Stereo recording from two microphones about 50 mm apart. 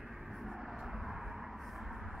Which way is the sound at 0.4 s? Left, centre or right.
Centre.